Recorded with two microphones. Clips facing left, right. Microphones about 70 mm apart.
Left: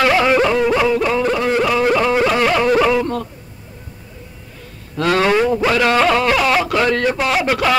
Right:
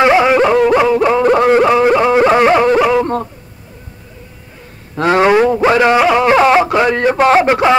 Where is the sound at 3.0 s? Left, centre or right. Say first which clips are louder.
Right 5 dB; right.